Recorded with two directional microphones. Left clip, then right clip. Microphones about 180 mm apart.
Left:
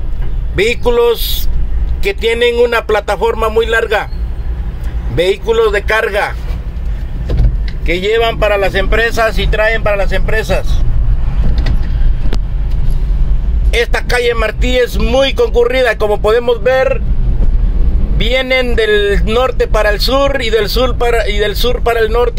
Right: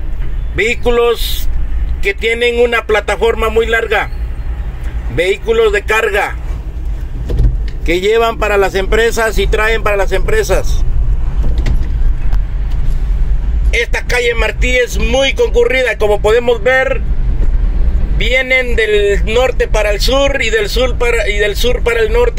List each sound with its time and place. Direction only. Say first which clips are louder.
0.6 s a man's voice: left 1 dB; 5° left (ahead or behind)
5.1 s a man's voice: left 1 dB; 10° left (ahead or behind)
5.7 s a man's voice: even; 5° right (ahead or behind)
7.8 s speech: right 1 dB; 25° right (ahead or behind)
13.7 s a man's voice: left 1 dB; 10° left (ahead or behind)
18.1 s a man's voice: right 1 dB; 10° left (ahead or behind)